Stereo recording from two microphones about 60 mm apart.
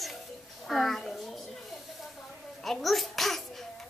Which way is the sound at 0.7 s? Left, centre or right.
Centre.